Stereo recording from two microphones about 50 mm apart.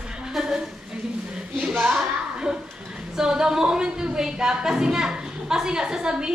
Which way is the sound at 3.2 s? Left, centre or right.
Centre.